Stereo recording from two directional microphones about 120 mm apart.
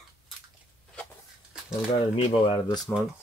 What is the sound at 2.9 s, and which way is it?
Speech, 20° left (ahead or behind).